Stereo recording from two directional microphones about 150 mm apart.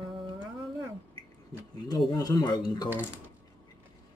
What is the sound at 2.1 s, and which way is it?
Speech, 25° left (ahead or behind).